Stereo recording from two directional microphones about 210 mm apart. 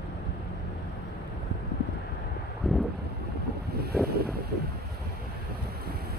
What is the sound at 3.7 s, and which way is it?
Wind noise, 50° right (ahead or behind).